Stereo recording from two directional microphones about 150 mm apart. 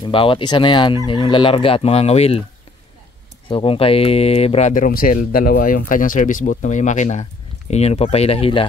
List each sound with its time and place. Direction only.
0.0 s fowl: 35° left (ahead or behind)
3.4 s speech: 35° left (ahead or behind)
7.7 s fowl: 45° left (ahead or behind)